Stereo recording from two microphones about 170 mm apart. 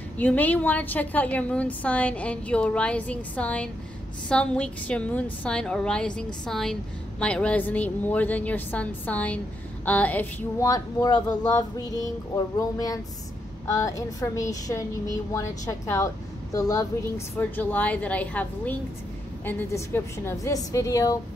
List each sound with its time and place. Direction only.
0.2 s a woman's voice: 10° left (ahead or behind)
10.7 s a woman's voice: 25° left (ahead or behind)